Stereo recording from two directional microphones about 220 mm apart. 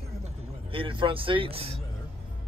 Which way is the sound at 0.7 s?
25° right (ahead or behind).